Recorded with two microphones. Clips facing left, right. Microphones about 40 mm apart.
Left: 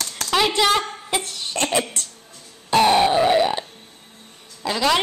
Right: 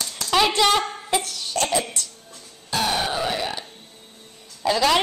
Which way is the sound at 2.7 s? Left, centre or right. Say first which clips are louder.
Left 8 dB; left.